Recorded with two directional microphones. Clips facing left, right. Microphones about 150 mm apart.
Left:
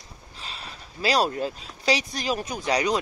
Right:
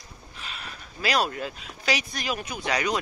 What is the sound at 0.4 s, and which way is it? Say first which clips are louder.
Speech: even; 30° left (ahead or behind).